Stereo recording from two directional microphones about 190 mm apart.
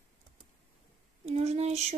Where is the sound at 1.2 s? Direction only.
35° right (ahead or behind).